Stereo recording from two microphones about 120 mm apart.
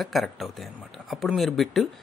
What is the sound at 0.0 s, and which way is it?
Speech, centre (ahead or behind).